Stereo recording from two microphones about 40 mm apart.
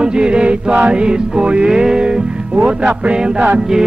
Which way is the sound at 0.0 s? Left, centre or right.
Right.